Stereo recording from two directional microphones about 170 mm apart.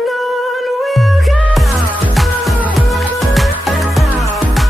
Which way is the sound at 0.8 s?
Centre (ahead or behind).